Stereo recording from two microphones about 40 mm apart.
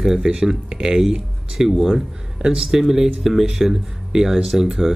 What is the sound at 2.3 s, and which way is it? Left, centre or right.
Speech, right.